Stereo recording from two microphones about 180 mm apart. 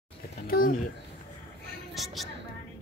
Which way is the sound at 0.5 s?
55° left (ahead or behind).